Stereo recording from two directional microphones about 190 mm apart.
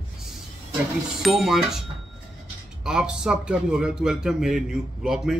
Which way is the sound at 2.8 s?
5° right (ahead or behind).